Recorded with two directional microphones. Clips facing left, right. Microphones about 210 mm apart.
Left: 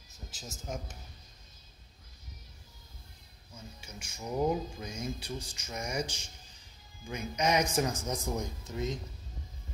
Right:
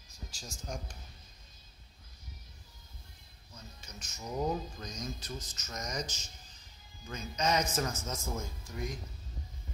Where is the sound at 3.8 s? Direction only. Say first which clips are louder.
Left 2 dB; 10° left (ahead or behind).